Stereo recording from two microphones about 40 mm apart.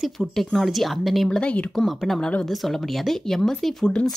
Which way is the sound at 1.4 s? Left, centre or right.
Left.